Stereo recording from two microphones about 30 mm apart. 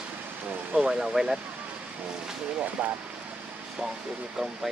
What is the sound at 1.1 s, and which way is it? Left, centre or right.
Speech, centre.